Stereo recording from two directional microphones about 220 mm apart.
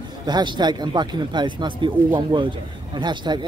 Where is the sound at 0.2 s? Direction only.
20° right (ahead or behind).